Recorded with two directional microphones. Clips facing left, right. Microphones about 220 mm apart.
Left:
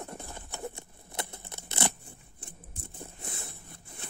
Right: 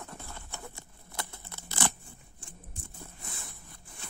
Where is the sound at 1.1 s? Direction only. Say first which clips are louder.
Left 3 dB; 20° left (ahead or behind).